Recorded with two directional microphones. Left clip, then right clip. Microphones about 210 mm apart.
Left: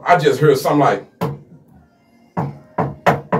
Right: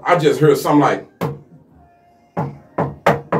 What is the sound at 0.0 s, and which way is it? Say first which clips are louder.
Speech: left 1 dB; 15° right (ahead or behind).